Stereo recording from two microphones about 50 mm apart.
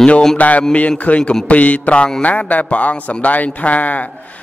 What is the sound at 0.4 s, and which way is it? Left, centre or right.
Speech, left.